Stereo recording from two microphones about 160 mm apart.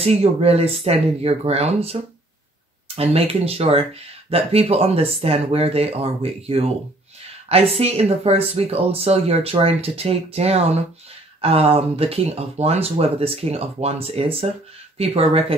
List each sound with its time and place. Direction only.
0.0 s speech: 40° right (ahead or behind)
3.0 s speech: 40° right (ahead or behind)